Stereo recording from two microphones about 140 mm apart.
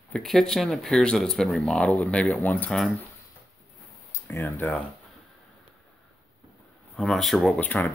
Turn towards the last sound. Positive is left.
turn(degrees=10)  # may be behind; listen again after turning